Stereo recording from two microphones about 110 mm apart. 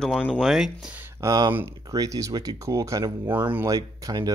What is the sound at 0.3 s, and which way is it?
Speech, 5° right (ahead or behind).